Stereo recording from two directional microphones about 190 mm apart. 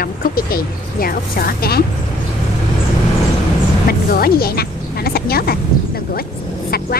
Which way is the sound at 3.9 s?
55° left (ahead or behind).